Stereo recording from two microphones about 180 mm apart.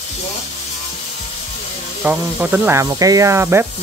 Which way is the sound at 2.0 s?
10° right (ahead or behind).